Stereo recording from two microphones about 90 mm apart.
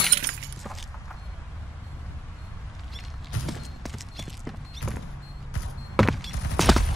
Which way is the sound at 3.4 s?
Centre (ahead or behind).